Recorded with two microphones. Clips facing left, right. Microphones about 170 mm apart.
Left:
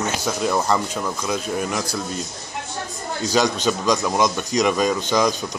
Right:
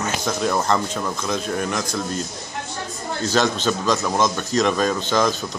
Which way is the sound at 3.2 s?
10° left (ahead or behind).